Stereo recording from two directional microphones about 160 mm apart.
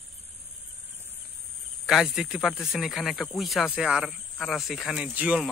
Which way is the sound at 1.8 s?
Centre (ahead or behind).